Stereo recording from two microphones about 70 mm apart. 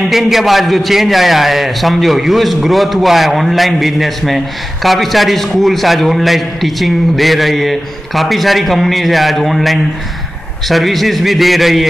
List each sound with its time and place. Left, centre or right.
0.1 s a man's voice: centre